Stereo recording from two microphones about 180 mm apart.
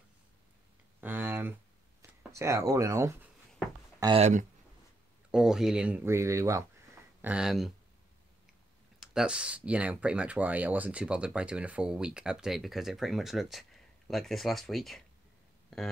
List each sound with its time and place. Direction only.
1.0 s a sound: 10° right (ahead or behind)
2.0 s speech: 15° right (ahead or behind)
4.2 s speech: 45° right (ahead or behind)
5.3 s speech: 5° right (ahead or behind)
7.2 s speech: 5° right (ahead or behind)
9.0 s speech: 5° right (ahead or behind)